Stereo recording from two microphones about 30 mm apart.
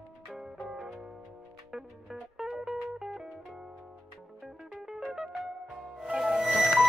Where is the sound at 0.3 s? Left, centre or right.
Centre.